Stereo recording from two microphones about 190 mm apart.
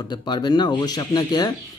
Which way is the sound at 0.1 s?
25° left (ahead or behind).